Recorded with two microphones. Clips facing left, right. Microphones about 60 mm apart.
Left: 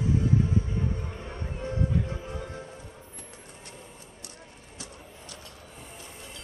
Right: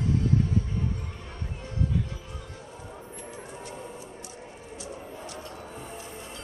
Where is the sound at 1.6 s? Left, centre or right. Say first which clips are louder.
Left 2 dB; left.